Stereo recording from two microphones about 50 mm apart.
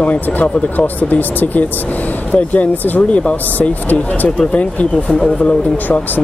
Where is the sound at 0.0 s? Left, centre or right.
Left.